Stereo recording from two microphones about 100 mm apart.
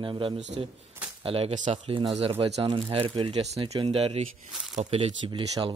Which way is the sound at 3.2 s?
50° right (ahead or behind).